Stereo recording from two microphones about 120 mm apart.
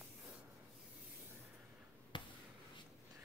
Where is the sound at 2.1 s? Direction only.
40° left (ahead or behind).